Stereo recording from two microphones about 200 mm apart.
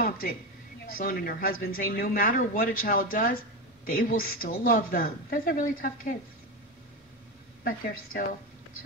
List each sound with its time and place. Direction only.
0.0 s a woman's voice: 45° left (ahead or behind)
7.6 s a woman's voice: 45° left (ahead or behind)